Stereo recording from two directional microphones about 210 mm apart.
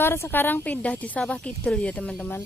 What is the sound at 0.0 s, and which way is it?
A woman's voice, 10° left (ahead or behind).